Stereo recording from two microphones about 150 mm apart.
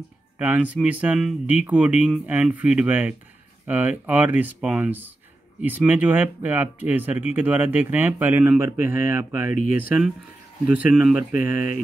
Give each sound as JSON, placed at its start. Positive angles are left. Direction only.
{"t": 0.4, "sound": "speech", "side_deg": -10}